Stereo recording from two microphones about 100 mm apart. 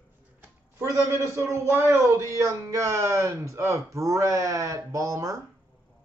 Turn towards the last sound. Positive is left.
turn(degrees=-35)  # may be behind; listen again after turning